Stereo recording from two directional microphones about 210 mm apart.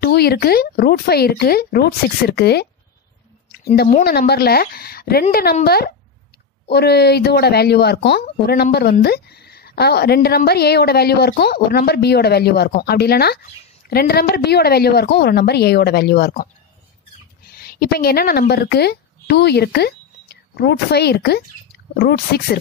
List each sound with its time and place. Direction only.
0.0 s speech: 50° left (ahead or behind)
17.5 s speech: 45° left (ahead or behind)